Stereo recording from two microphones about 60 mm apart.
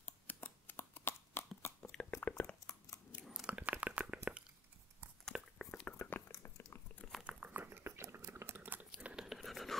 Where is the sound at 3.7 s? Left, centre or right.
Right.